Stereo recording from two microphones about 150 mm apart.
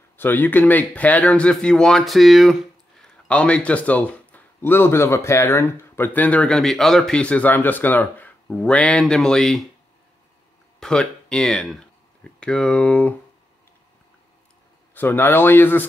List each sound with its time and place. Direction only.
0.2 s speech: 15° left (ahead or behind)
10.8 s speech: 5° left (ahead or behind)
15.0 s speech: 15° left (ahead or behind)